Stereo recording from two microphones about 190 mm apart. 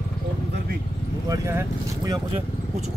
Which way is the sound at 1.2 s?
15° right (ahead or behind).